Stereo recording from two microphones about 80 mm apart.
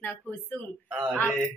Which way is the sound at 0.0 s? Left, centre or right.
Centre.